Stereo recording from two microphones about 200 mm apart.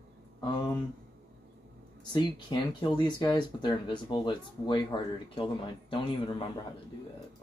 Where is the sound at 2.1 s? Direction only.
20° left (ahead or behind).